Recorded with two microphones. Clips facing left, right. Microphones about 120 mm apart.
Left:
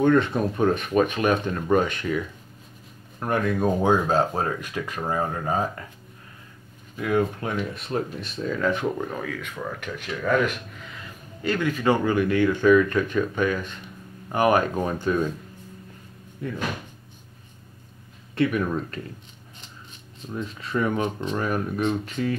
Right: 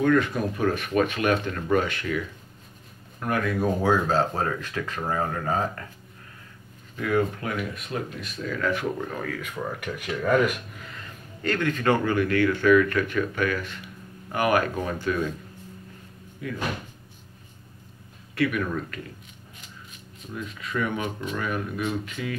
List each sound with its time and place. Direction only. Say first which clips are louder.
0.0 s speech: left 2 dB; 25° left (ahead or behind)
7.0 s speech: left 1 dB; 20° left (ahead or behind)
9.2 s speech: even; 5° right (ahead or behind)
11.4 s speech: left 1 dB; 10° left (ahead or behind)
18.3 s speech: left 2 dB; 25° left (ahead or behind)
20.2 s speech: left 3 dB; 30° left (ahead or behind)